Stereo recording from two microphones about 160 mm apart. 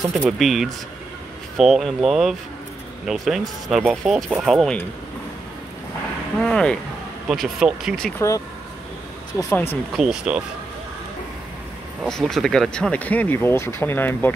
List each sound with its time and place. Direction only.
0.1 s speech: centre (ahead or behind)
6.4 s speech: 5° left (ahead or behind)
9.4 s speech: 15° left (ahead or behind)
9.9 s speech: 5° right (ahead or behind)
12.1 s speech: centre (ahead or behind)